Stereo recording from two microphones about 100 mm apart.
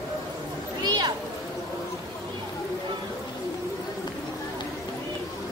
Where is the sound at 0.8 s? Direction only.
45° right (ahead or behind).